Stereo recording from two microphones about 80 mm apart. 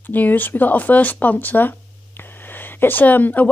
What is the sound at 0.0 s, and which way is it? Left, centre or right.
Speech, left.